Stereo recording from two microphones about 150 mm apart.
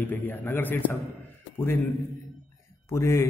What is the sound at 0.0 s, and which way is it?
Speech, 15° left (ahead or behind).